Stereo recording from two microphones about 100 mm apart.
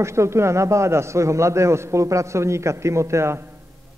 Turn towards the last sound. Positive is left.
turn(degrees=-25)  # may be behind; listen again after turning